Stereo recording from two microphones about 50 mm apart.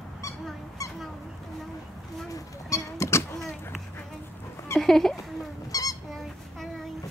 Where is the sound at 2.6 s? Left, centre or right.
Left.